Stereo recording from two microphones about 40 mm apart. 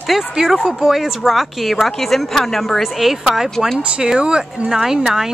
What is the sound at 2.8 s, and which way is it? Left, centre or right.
Speech, centre.